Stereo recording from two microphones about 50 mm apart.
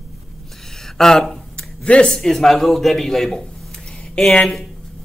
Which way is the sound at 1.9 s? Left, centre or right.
Centre.